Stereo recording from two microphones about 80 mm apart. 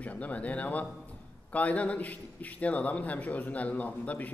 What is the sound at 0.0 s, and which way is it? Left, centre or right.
A man's voice, centre.